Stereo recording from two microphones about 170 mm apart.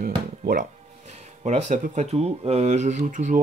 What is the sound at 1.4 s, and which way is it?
Speech, 40° right (ahead or behind).